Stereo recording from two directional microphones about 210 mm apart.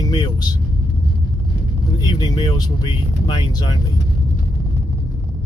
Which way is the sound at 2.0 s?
20° left (ahead or behind).